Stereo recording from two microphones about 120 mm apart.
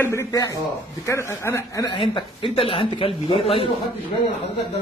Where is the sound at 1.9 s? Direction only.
45° left (ahead or behind).